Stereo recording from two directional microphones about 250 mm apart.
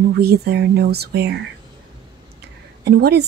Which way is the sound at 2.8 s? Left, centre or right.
Right.